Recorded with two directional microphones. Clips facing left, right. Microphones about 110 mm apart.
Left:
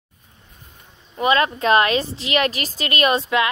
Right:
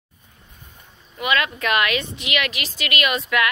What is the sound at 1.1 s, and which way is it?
A woman's voice, 35° left (ahead or behind).